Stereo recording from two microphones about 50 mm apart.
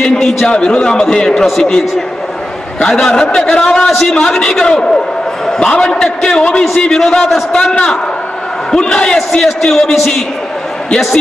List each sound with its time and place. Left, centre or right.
0.0 s a sound: centre
0.5 s a man's voice: centre
8.7 s a man's voice: centre